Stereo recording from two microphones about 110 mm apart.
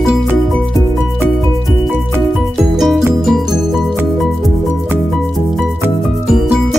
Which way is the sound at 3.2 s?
Centre (ahead or behind).